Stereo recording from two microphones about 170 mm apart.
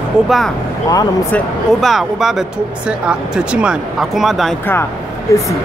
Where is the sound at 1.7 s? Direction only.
Centre (ahead or behind).